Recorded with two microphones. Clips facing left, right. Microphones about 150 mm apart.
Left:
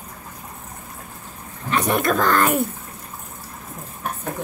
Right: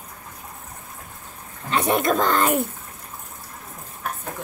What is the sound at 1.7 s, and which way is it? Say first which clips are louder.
Speech: even; 25° right (ahead or behind).